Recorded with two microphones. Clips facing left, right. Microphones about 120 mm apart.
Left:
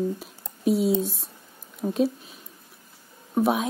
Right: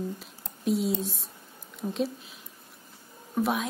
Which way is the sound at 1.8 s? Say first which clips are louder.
Left 5 dB; 30° left (ahead or behind).